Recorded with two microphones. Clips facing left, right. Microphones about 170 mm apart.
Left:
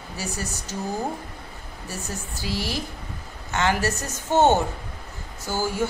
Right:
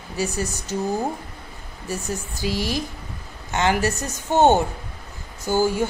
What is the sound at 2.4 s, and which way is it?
A woman's voice, 15° right (ahead or behind).